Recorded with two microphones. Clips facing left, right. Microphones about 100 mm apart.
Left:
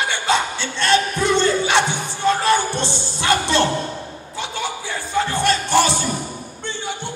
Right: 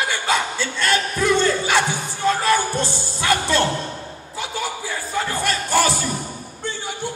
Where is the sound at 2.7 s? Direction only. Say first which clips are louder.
Even; 25° left (ahead or behind).